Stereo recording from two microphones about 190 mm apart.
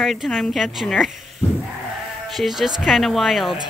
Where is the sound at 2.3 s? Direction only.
Centre (ahead or behind).